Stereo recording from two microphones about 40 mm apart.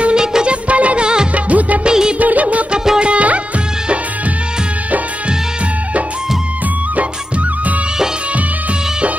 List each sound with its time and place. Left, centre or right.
0.0 s music: centre
0.7 s music: right
1.3 s music of bollywood: right
1.9 s music of bollywood: right
2.1 s music of bollywood: right
2.7 s music: centre
3.0 s music: right